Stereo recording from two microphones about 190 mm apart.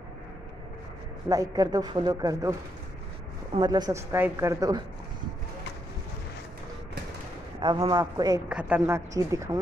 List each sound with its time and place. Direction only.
1.3 s a woman's voice: 20° right (ahead or behind)
3.5 s a woman's voice: 20° right (ahead or behind)
7.6 s a woman's voice: 25° right (ahead or behind)
8.5 s speech: 5° right (ahead or behind)